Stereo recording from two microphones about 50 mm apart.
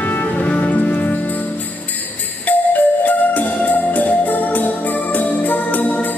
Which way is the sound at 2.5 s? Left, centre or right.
Left.